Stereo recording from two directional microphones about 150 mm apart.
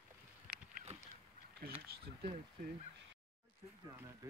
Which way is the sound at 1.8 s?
90° right.